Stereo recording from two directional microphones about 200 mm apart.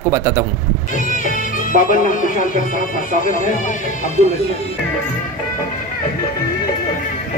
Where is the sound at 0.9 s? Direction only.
40° left (ahead or behind).